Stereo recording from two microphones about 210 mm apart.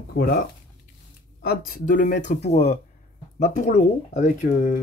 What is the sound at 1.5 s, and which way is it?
Speech, 40° left (ahead or behind).